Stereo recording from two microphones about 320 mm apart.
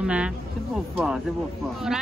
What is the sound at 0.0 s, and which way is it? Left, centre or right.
Speech, centre.